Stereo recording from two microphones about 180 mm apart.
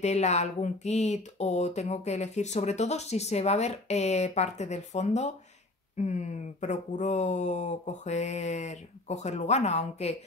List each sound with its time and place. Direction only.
0.0 s speech: 40° left (ahead or behind)